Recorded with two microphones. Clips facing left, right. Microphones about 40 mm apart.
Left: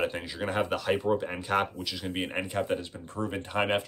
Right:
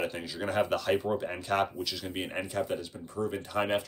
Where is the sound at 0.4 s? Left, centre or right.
Centre.